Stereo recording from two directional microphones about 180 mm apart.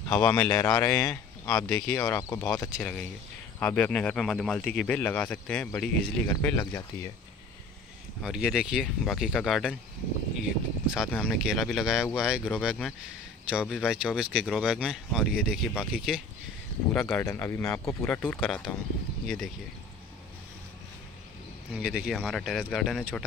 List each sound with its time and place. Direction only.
0.3 s speech: 10° left (ahead or behind)
8.2 s speech: 5° right (ahead or behind)
11.1 s speech: 5° left (ahead or behind)
16.9 s speech: 5° left (ahead or behind)
17.2 s speech: 15° left (ahead or behind)
21.7 s speech: centre (ahead or behind)